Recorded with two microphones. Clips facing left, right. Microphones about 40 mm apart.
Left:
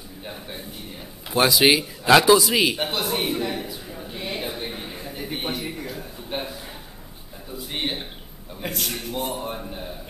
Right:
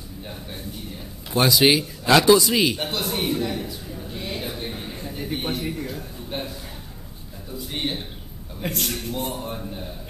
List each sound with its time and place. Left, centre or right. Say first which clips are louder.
0.2 s a man's voice: left 1 dB; centre
1.3 s a sound: even; centre
7.5 s a man's voice: even; centre
8.5 s a man's voice: right 1 dB; centre